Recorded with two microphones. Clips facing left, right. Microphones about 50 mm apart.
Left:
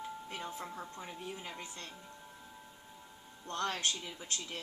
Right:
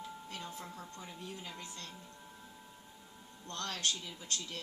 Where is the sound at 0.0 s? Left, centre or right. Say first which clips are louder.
Left 3 dB; left.